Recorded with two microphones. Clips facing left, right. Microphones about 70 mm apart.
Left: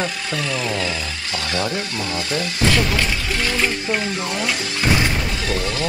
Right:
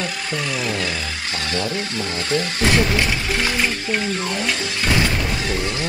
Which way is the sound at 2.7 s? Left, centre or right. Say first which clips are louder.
Right 3 dB; right.